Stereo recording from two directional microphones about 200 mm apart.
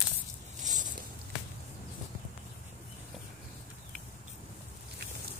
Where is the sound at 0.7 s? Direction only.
40° right (ahead or behind).